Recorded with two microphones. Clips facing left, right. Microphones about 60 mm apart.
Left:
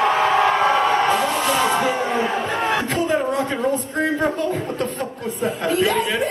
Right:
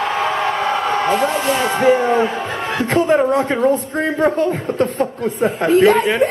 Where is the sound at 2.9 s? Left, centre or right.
Right.